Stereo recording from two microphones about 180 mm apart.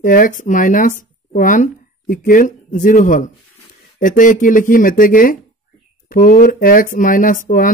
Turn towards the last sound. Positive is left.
turn(degrees=50)  # may be behind; listen again after turning